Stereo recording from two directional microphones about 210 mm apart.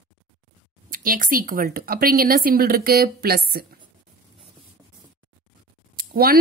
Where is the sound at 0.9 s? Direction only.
40° right (ahead or behind).